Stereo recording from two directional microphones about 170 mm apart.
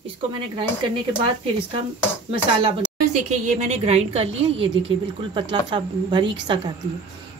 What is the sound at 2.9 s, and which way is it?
A woman's voice, 45° right (ahead or behind).